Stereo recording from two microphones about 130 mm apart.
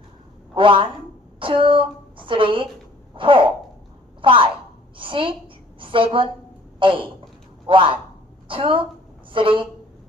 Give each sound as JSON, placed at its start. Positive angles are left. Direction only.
{"t": 0.6, "sound": "a woman's voice", "side_deg": -40}